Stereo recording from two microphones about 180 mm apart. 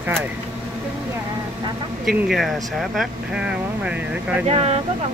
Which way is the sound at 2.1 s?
Centre (ahead or behind).